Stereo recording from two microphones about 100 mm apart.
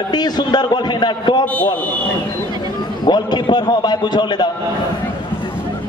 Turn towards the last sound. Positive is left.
turn(degrees=50)  # may be behind; listen again after turning